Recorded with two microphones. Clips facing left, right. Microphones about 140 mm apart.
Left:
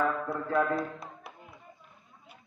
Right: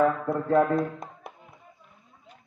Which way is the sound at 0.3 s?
45° right (ahead or behind).